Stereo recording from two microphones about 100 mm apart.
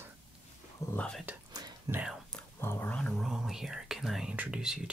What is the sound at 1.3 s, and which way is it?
Whispering, 15° right (ahead or behind).